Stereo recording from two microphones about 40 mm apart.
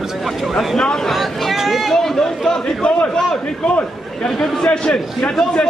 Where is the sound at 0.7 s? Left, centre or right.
Centre.